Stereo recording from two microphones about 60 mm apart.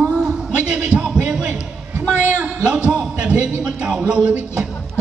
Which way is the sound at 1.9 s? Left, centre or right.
Right.